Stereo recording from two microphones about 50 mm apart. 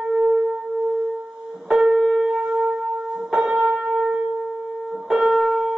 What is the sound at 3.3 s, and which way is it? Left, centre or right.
Church bell, centre.